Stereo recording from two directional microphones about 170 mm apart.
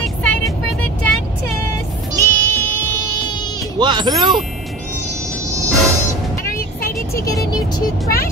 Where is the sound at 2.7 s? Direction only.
10° left (ahead or behind).